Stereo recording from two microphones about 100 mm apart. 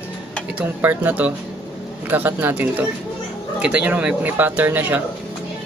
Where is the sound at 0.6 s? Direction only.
15° right (ahead or behind).